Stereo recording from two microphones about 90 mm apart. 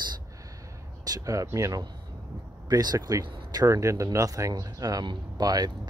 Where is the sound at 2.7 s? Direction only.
45° right (ahead or behind).